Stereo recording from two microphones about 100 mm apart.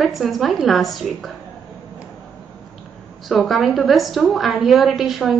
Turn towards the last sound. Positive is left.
turn(degrees=0)  # may be behind; listen again after turning